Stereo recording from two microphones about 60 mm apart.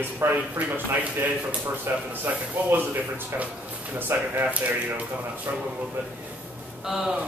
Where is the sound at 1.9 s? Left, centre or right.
Right.